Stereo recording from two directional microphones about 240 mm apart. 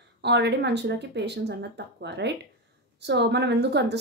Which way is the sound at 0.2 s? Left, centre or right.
Right.